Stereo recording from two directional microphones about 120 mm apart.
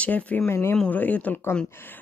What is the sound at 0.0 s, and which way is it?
Speech, 10° left (ahead or behind).